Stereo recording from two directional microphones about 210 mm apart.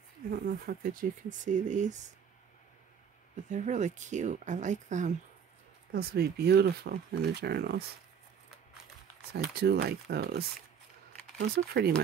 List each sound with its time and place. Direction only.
0.3 s speech: 45° right (ahead or behind)
3.4 s speech: 35° right (ahead or behind)
5.9 s speech: 50° right (ahead or behind)
9.3 s speech: 50° right (ahead or behind)